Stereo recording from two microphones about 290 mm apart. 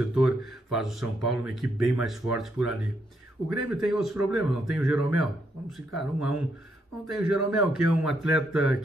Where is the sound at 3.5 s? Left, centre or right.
Centre.